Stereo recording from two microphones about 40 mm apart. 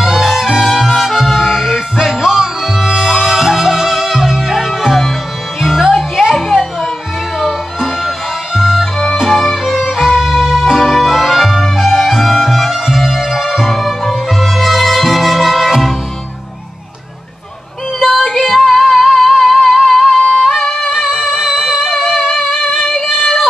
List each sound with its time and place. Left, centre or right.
0.0 s music: centre
9.4 s violin: centre
9.8 s music: centre
18.0 s music: centre